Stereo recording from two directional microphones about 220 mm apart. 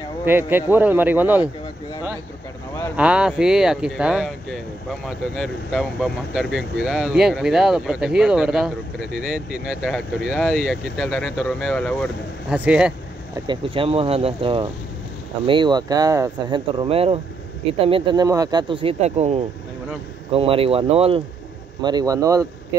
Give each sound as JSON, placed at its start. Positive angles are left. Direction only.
{"t": 0.2, "sound": "speech", "side_deg": -10}
{"t": 3.0, "sound": "speech", "side_deg": -5}
{"t": 12.5, "sound": "speech", "side_deg": -5}
{"t": 13.5, "sound": "speech", "side_deg": -25}